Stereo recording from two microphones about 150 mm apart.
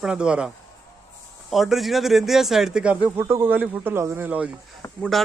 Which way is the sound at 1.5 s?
Centre (ahead or behind).